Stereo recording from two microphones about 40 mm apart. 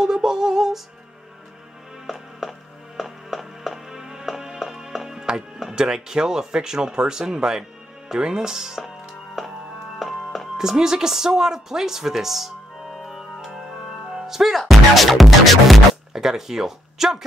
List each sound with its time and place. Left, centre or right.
0.0 s female singing: centre
2.0 s music: centre
10.6 s music: centre
16.1 s speech: centre